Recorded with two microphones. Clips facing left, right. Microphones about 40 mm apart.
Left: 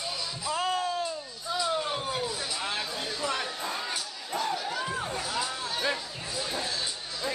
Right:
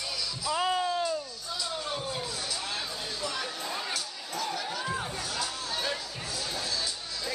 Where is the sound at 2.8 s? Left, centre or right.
Centre.